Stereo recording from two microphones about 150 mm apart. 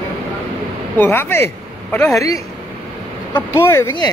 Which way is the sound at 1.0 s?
15° left (ahead or behind).